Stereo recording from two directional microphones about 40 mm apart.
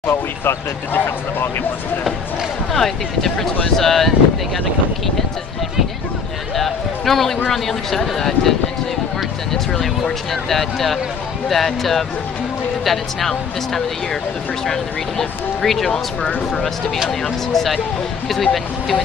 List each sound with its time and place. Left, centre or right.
0.0 s speech: left
2.7 s speech: centre
6.5 s a sound: centre
7.4 s speech: centre
16.3 s speech: left
17.2 s speech: centre